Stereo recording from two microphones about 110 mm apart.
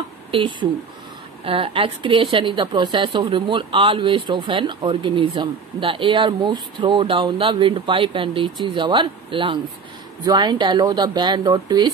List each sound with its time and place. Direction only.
0.3 s a woman's voice: 45° right (ahead or behind)
1.4 s a woman's voice: 60° right (ahead or behind)
10.2 s speech: 40° right (ahead or behind)